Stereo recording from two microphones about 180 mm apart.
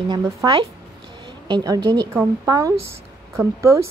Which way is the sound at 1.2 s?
25° right (ahead or behind).